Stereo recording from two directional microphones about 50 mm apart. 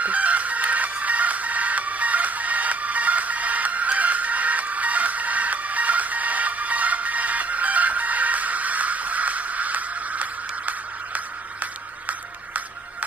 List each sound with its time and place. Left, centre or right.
0.0 s music: right